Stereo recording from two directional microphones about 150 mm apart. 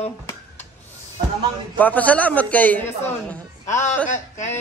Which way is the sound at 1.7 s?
10° left (ahead or behind).